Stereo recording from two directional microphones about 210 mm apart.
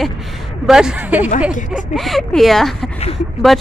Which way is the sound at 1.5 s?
35° left (ahead or behind).